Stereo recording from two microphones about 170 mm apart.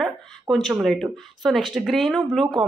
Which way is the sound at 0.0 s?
Centre (ahead or behind).